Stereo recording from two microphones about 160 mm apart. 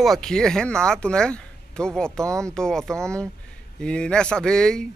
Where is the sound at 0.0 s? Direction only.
Centre (ahead or behind).